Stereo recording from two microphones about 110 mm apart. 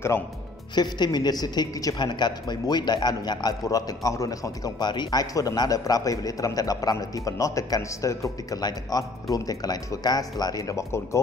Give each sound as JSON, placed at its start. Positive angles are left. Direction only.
{"t": 0.7, "sound": "a woman's voice", "side_deg": 40}